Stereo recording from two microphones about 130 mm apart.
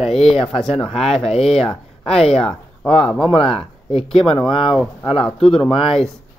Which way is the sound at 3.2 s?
45° left (ahead or behind).